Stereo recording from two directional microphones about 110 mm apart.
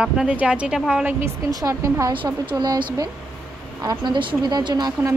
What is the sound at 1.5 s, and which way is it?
Speech, 30° right (ahead or behind).